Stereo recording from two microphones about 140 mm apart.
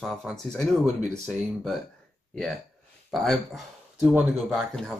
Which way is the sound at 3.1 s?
Centre (ahead or behind).